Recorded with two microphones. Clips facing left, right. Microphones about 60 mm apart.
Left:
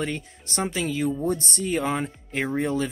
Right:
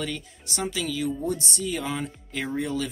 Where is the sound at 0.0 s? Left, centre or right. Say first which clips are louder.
Left 3 dB; left.